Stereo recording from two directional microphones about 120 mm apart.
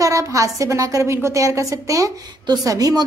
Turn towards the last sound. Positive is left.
turn(degrees=-30)  # may be behind; listen again after turning